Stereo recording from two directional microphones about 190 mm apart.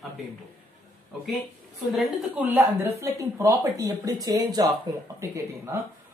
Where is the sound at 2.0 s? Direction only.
Centre (ahead or behind).